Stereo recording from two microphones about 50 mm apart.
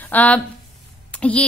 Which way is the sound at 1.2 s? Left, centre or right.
Centre.